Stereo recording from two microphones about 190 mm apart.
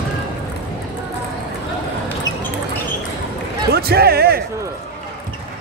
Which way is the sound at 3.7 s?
55° right (ahead or behind).